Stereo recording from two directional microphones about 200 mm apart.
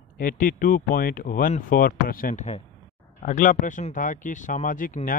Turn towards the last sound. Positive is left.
turn(degrees=40)  # may be behind; listen again after turning